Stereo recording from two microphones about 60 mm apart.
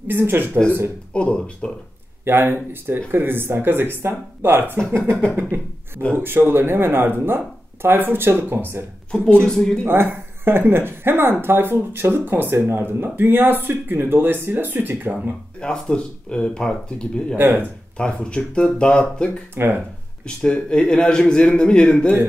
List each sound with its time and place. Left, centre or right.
0.1 s speech: right
1.1 s a man's voice: centre
2.2 s speech: right
5.3 s a sound: right
6.1 s speech: right
9.4 s a man's voice: centre
9.8 s speech: right
15.6 s a man's voice: centre
19.5 s speech: right
20.2 s a man's voice: centre